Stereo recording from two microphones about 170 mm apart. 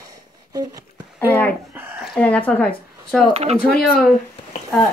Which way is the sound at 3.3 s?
40° right (ahead or behind).